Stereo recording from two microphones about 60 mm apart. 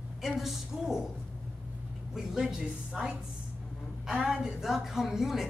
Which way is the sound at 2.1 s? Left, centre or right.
Centre.